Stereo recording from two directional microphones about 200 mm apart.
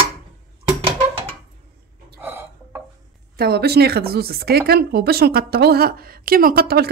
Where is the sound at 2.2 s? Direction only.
10° right (ahead or behind).